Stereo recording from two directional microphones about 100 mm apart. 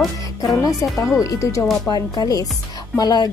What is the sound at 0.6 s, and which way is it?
A woman's voice, 35° left (ahead or behind).